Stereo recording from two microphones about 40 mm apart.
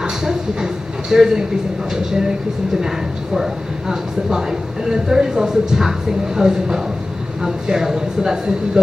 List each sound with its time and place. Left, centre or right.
0.0 s vehicle: centre
1.1 s speech: centre